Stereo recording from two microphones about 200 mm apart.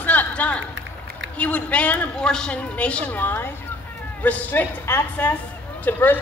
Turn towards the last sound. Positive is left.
turn(degrees=10)  # may be behind; listen again after turning